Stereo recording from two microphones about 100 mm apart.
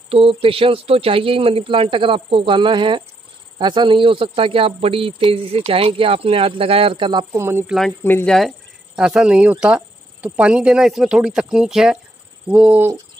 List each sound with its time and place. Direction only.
0.1 s speech: 65° right (ahead or behind)
7.3 s speech: 25° right (ahead or behind)
8.0 s speech: 20° left (ahead or behind)
8.3 s speech: centre (ahead or behind); by 12.9 s 15° right (ahead or behind)